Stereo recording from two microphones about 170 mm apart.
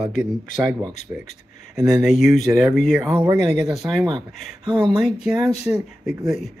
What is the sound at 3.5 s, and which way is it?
Speech, centre (ahead or behind).